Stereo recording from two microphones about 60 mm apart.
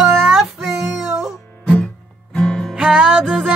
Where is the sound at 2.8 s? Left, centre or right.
Centre.